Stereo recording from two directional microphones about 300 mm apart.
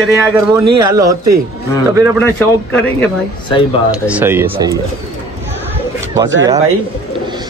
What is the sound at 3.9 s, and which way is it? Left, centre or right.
Speech, centre.